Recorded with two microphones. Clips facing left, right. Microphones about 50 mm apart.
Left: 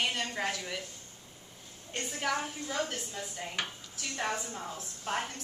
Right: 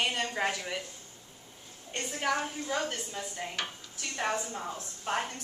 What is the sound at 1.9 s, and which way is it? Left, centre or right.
A woman's voice, centre.